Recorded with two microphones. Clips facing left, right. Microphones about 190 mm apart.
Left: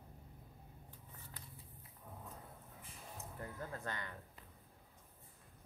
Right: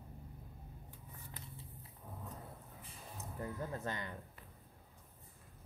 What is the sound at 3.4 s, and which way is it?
Speech, 20° right (ahead or behind).